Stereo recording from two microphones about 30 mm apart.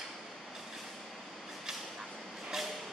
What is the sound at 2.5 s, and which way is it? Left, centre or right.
Vehicle, centre.